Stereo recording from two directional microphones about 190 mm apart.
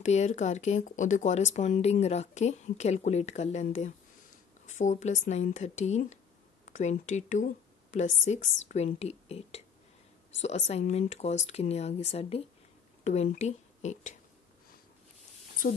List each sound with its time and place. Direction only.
0.0 s a woman's voice: 35° left (ahead or behind)
10.7 s speech: 35° left (ahead or behind)